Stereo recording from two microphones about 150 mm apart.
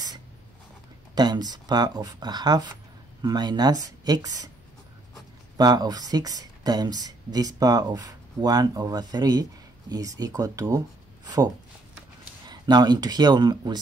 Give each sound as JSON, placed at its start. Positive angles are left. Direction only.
{"t": 1.1, "sound": "speech", "side_deg": -30}
{"t": 5.6, "sound": "speech", "side_deg": -25}